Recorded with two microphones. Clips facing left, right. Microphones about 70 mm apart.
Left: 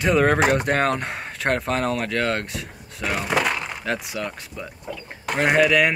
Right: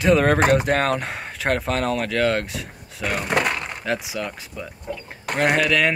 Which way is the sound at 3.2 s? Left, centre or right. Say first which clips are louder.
Even; right.